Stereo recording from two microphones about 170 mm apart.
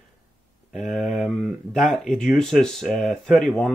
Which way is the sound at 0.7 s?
Centre (ahead or behind).